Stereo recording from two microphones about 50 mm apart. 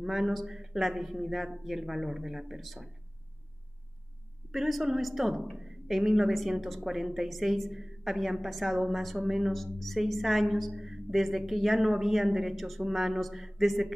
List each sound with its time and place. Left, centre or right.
0.0 s a woman's voice: centre
4.5 s a woman's voice: centre